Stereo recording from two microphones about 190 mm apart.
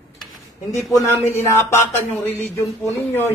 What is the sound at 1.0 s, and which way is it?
Speech, 15° left (ahead or behind).